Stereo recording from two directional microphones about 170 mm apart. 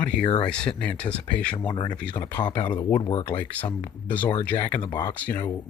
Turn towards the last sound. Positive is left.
turn(degrees=10)  # may be behind; listen again after turning